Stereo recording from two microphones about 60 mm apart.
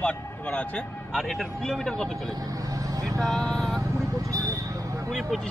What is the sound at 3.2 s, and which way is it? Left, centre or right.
Speech, centre.